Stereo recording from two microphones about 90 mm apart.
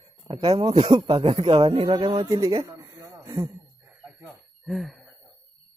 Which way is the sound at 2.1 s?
50° right (ahead or behind).